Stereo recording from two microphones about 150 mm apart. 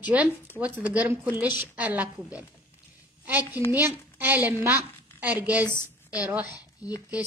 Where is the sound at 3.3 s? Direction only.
15° right (ahead or behind).